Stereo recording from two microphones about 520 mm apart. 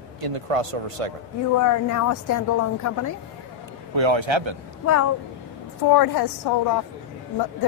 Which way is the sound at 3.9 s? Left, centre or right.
Right.